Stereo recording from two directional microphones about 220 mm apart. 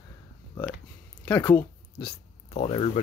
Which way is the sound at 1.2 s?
20° left (ahead or behind).